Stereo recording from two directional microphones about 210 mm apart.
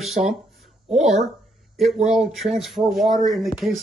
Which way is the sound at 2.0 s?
5° right (ahead or behind).